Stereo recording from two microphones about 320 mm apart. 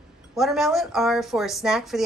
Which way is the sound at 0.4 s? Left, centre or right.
Centre.